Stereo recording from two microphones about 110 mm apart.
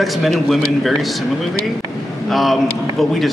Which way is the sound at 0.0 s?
Centre (ahead or behind).